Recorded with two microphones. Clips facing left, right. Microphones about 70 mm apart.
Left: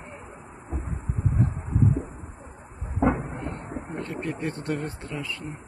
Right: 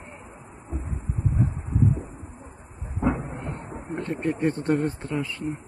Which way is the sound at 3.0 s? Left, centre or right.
Left.